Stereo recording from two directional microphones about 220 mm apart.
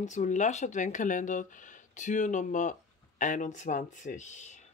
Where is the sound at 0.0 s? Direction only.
35° left (ahead or behind).